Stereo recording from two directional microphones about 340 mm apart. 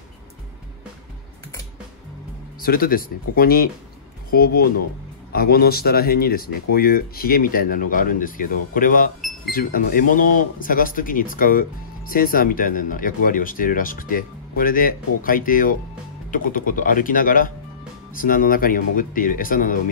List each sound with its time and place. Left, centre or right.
2.6 s speech: left